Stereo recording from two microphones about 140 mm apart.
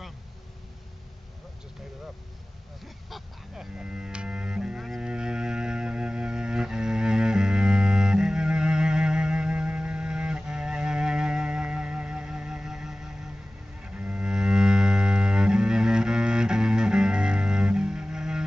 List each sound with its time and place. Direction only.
2.8 s livestock: centre (ahead or behind)
13.7 s cello: 10° right (ahead or behind)